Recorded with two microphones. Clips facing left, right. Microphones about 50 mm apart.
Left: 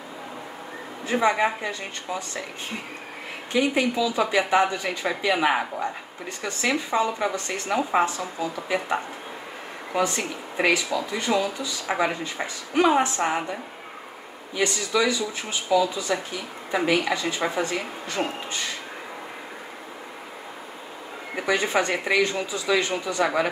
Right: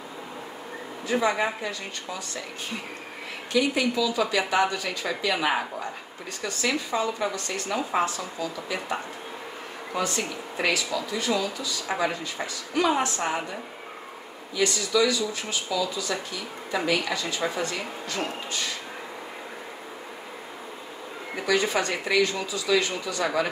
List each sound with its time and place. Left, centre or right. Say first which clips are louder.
1.1 s speech: left 3 dB; centre
3.5 s speech: left 1 dB; left
14.6 s speech: even; left
21.4 s speech: left 1 dB; left